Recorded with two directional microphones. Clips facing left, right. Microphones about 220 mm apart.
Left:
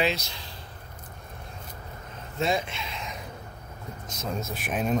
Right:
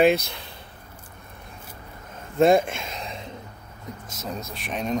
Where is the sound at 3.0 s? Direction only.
30° right (ahead or behind).